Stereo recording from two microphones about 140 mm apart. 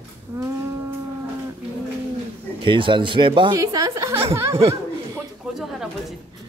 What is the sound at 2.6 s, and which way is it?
Speech, 35° right (ahead or behind).